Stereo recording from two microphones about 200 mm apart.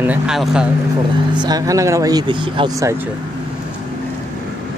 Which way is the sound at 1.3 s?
20° right (ahead or behind).